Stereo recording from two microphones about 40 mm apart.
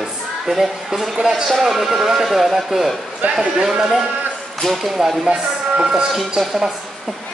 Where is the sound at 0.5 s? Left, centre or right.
Centre.